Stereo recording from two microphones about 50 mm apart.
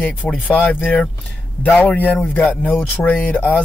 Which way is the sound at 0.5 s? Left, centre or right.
Left.